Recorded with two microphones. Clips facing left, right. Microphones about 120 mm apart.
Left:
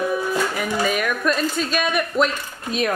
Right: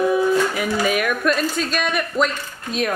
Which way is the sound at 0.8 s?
5° right (ahead or behind).